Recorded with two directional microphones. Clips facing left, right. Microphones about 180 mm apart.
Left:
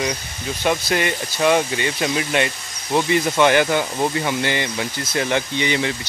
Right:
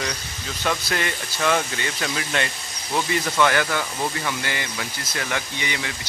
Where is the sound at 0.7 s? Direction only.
20° left (ahead or behind).